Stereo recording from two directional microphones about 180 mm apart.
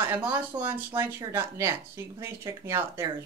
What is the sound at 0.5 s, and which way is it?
Speech, 25° right (ahead or behind).